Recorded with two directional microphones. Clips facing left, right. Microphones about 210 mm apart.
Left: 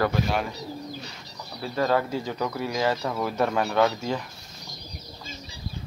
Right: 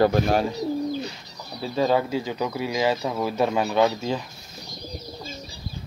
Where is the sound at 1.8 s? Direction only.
15° right (ahead or behind).